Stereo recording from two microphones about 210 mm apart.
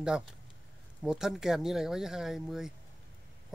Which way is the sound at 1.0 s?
Centre (ahead or behind).